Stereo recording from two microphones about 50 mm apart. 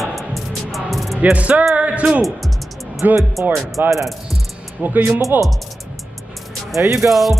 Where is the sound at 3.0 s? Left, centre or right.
Right.